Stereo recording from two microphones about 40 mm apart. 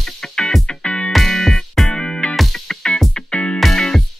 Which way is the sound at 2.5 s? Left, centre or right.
Centre.